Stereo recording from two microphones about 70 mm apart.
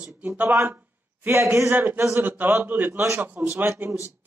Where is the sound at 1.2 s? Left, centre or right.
Right.